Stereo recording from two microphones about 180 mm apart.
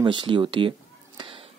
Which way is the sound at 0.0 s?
25° right (ahead or behind).